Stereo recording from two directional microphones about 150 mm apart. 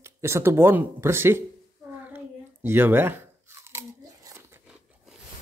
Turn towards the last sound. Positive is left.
turn(degrees=-20)  # may be behind; listen again after turning